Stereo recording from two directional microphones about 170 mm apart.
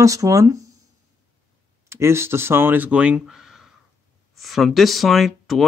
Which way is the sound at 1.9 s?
15° right (ahead or behind).